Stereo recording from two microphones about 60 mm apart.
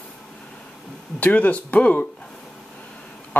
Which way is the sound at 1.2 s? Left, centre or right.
Left.